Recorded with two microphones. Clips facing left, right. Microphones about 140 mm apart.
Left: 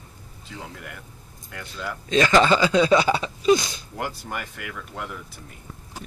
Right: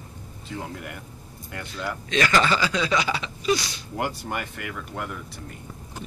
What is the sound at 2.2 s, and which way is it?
Speech, 25° left (ahead or behind).